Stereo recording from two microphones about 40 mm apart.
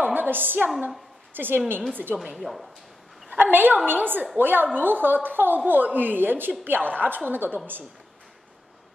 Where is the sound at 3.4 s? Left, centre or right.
Right.